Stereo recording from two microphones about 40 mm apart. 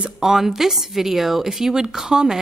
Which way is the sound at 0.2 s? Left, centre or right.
Centre.